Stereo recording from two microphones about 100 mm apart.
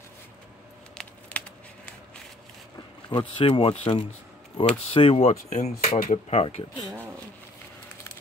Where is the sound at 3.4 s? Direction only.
65° left (ahead or behind).